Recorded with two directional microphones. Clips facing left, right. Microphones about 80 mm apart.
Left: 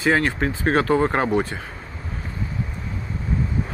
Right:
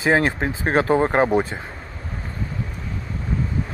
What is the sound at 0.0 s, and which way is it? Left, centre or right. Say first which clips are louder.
Speech: right 1 dB; right.